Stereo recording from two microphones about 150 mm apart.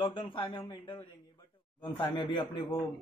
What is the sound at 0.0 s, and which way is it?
Speech, 35° left (ahead or behind).